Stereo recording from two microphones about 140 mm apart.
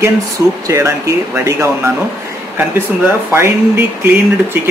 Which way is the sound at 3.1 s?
20° right (ahead or behind).